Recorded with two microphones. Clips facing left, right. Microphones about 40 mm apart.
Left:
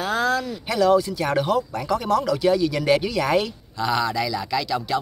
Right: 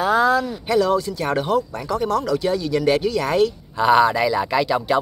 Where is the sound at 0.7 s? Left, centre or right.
Centre.